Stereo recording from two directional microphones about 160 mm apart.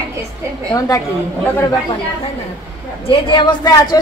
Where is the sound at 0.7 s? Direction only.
20° left (ahead or behind).